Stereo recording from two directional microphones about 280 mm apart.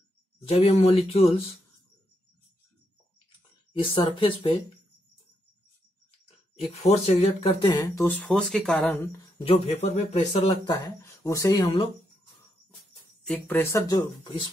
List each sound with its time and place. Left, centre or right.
0.5 s speech: left
3.8 s speech: centre
6.8 s speech: left; by 9.2 s centre
9.4 s speech: left
13.2 s speech: centre